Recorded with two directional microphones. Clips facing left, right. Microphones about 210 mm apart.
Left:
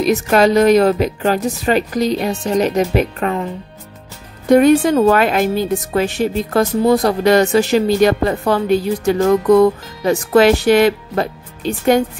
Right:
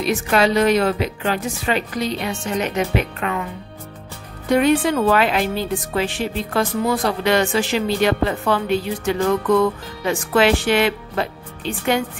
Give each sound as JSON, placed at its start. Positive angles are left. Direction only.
{"t": 0.0, "sound": "speech", "side_deg": 45}
{"t": 4.5, "sound": "speech", "side_deg": 45}